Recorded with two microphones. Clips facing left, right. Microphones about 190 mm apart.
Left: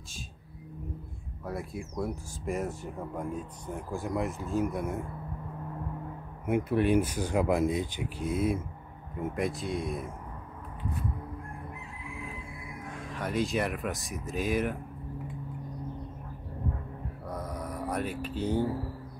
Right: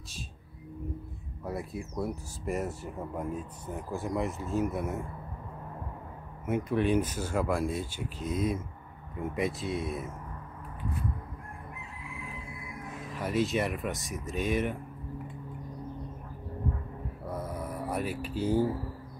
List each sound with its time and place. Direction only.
1.4 s speech: 5° right (ahead or behind)
6.4 s speech: 10° left (ahead or behind)
13.1 s speech: 5° right (ahead or behind)
17.3 s a sound: 5° right (ahead or behind)